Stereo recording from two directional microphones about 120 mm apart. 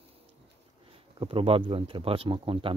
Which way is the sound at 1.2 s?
50° right (ahead or behind).